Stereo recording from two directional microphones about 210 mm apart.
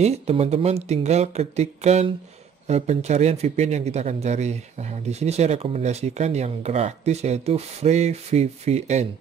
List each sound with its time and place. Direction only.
0.0 s a man's voice: 30° right (ahead or behind)